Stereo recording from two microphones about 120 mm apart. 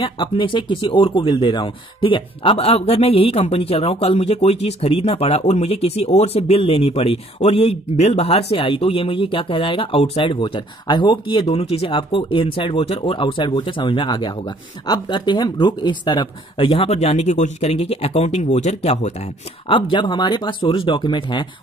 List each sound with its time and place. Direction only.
0.0 s speech: 45° left (ahead or behind)
11.4 s speech: 60° left (ahead or behind)
19.7 s speech: 40° left (ahead or behind)